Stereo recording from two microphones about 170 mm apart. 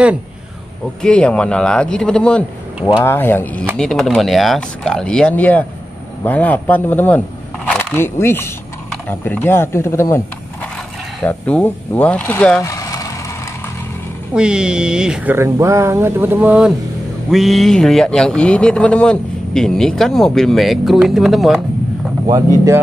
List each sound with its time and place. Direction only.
1.0 s speech: 5° left (ahead or behind)
12.6 s vehicle: 20° left (ahead or behind)
14.3 s speech: 5° right (ahead or behind)